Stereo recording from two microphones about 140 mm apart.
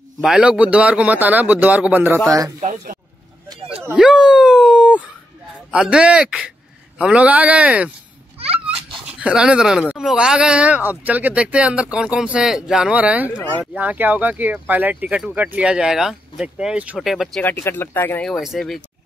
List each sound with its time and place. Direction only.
0.2 s speech: 5° right (ahead or behind)
2.6 s speech: 75° right (ahead or behind)
3.9 s speech: 5° right (ahead or behind)
17.4 s speech: 15° left (ahead or behind)
18.2 s speech: centre (ahead or behind)